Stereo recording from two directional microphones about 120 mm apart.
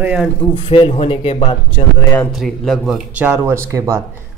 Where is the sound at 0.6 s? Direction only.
45° left (ahead or behind).